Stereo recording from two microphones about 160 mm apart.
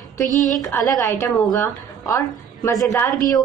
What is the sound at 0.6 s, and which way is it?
A woman's voice, 20° left (ahead or behind).